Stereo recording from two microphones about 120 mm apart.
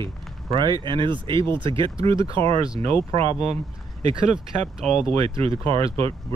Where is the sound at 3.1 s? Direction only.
65° right (ahead or behind).